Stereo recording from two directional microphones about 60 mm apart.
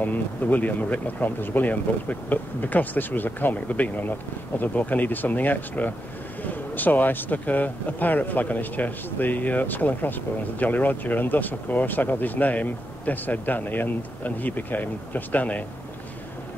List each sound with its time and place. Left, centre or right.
0.0 s speech: left